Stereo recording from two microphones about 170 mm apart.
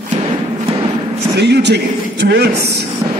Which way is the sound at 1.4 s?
85° right.